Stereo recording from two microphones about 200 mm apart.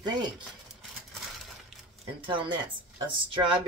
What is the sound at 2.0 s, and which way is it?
Speech, 25° right (ahead or behind).